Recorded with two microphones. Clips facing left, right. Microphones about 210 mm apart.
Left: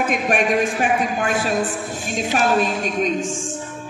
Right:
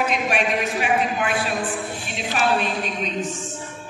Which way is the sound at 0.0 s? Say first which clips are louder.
Left 3 dB; 50° left (ahead or behind).